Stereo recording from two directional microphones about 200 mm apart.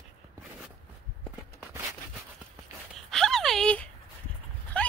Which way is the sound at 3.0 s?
Centre (ahead or behind).